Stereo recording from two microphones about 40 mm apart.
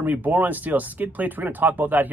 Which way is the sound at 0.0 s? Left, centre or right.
Right.